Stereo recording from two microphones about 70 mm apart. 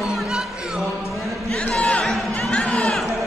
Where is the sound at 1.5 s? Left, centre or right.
Centre.